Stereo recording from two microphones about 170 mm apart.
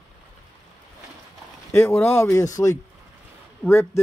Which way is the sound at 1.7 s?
15° left (ahead or behind).